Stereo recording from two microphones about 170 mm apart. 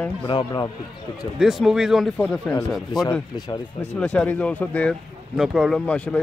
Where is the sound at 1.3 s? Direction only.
5° right (ahead or behind).